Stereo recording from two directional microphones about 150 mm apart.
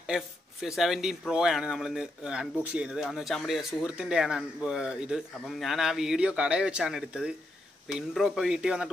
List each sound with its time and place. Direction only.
0.0 s speech: 5° right (ahead or behind)